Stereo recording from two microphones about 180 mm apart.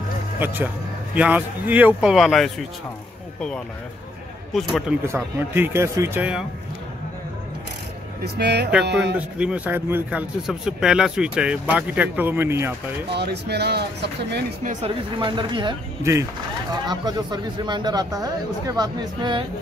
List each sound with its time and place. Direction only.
0.4 s a man's voice: 10° right (ahead or behind)
5.0 s a man's voice: 10° right (ahead or behind)
8.2 s speech: 70° right (ahead or behind)
9.1 s a man's voice: 5° right (ahead or behind)
13.1 s speech: 65° right (ahead or behind)
14.6 s a woman's voice: 45° right (ahead or behind)
15.1 s speech: 25° right (ahead or behind)